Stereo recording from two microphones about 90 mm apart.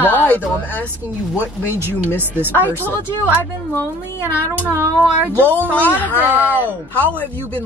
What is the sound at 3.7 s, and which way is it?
Speech, 25° left (ahead or behind).